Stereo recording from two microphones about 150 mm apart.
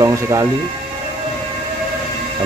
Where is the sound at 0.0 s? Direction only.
20° right (ahead or behind).